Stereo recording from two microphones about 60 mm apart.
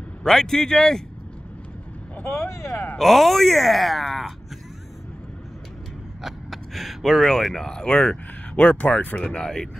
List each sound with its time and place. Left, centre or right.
0.2 s speech: centre
2.2 s speech: left
3.0 s speech: centre
6.2 s speech: centre